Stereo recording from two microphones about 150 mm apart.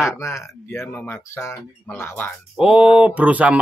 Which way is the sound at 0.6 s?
15° left (ahead or behind).